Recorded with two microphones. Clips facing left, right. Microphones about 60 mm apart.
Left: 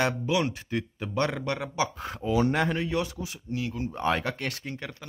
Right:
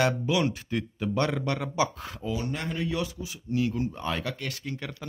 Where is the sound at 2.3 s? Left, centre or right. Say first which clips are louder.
Left 9 dB; left.